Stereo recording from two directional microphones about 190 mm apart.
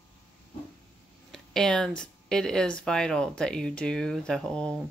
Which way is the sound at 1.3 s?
5° left (ahead or behind).